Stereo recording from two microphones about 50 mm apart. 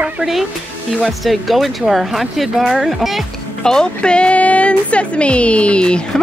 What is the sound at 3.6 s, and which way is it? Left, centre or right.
Speech, centre.